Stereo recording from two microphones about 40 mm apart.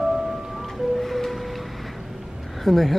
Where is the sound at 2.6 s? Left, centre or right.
Centre.